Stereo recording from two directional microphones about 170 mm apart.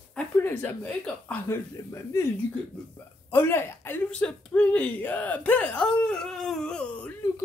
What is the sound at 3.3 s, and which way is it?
Speech, 15° left (ahead or behind).